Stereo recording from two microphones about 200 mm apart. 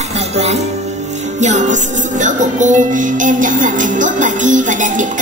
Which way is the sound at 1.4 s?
35° right (ahead or behind).